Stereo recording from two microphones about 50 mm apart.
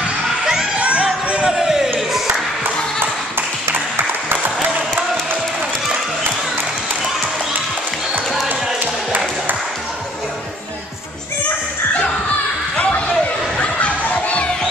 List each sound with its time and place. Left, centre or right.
0.7 s music: right
1.4 s a sound: centre
3.9 s applause: right
8.5 s basketball bounce: right
13.6 s children playing: left